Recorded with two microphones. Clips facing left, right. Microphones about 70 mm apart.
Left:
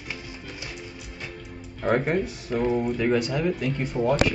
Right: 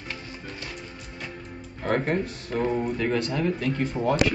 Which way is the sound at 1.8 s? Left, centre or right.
Centre.